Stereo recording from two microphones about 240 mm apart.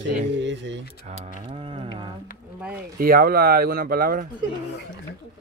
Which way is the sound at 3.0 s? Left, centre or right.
Right.